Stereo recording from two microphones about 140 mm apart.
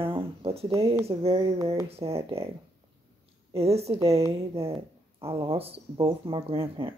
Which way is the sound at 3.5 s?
45° right (ahead or behind).